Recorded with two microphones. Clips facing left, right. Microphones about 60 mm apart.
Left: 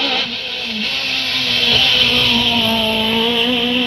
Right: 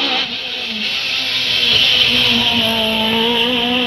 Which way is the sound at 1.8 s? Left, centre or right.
Left.